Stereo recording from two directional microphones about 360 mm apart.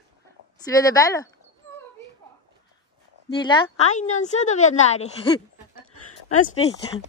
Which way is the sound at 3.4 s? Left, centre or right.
Centre.